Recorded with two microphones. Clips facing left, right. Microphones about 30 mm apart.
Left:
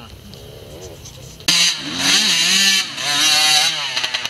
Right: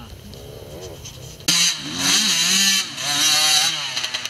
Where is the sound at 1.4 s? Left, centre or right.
Centre.